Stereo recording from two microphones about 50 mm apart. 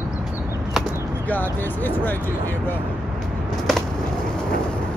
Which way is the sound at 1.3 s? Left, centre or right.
Left.